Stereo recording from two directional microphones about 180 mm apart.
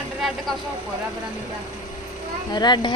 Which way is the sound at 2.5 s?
25° left (ahead or behind).